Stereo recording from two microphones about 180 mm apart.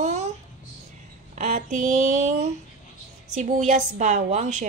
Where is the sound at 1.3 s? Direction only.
40° right (ahead or behind).